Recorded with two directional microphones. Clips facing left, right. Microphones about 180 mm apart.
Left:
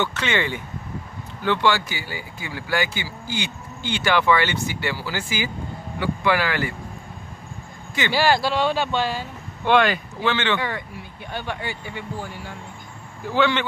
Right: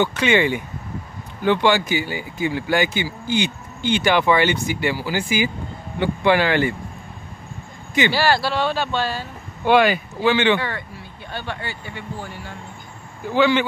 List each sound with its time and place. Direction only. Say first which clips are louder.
0.0 s speech: right 6 dB; 15° right (ahead or behind)
8.1 s speech: left 5 dB; 15° left (ahead or behind)
9.7 s speech: right 3 dB; 5° right (ahead or behind)
11.3 s speech: left 1 dB; 15° left (ahead or behind)
13.3 s speech: right 4 dB; 5° right (ahead or behind)